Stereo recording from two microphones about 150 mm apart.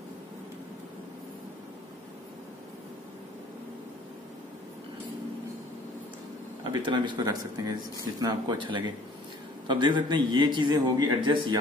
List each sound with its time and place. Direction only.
6.6 s a man's voice: 30° right (ahead or behind)